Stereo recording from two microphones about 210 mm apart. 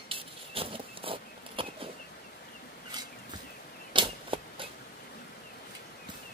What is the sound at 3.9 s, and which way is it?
Typewriter, 25° right (ahead or behind).